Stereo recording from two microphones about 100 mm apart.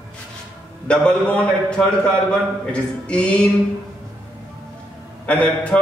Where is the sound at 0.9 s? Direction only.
10° left (ahead or behind).